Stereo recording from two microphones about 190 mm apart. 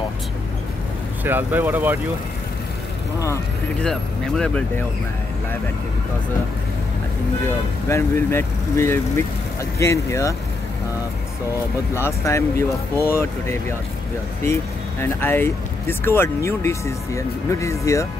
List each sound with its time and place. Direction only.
1.2 s speech: 10° right (ahead or behind)
3.8 s speech: 5° left (ahead or behind)
7.4 s speech: 15° left (ahead or behind)
11.9 s speech: 15° left (ahead or behind)